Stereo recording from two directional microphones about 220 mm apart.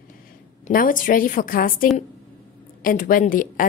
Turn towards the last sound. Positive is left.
turn(degrees=35)  # may be behind; listen again after turning